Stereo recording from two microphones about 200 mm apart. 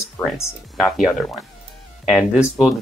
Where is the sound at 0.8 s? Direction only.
Centre (ahead or behind).